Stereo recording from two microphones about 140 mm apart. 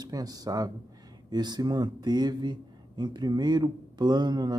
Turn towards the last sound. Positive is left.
turn(degrees=-30)  # may be behind; listen again after turning